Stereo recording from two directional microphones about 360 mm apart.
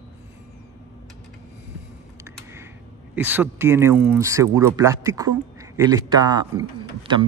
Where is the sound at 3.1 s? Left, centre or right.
Centre.